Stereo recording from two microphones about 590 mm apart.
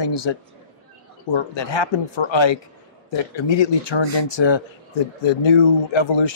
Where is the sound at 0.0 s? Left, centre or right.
Left.